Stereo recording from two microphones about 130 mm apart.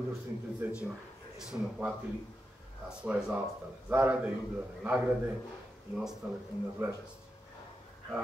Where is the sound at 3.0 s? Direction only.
10° right (ahead or behind).